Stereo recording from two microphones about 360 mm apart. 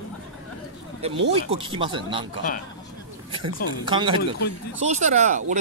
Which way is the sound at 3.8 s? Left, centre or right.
Centre.